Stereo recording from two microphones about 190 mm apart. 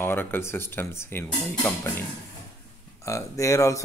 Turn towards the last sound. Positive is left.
turn(degrees=15)  # may be behind; listen again after turning